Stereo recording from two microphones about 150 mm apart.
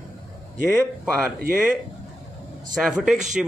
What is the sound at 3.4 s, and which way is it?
Speech, centre (ahead or behind).